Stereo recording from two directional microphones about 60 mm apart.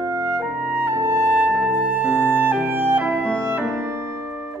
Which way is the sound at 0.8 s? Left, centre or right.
Right.